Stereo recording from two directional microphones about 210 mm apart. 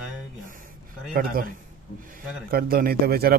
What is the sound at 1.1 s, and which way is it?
Speech, 45° right (ahead or behind).